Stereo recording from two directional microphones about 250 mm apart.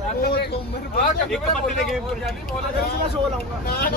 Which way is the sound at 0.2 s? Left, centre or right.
Left.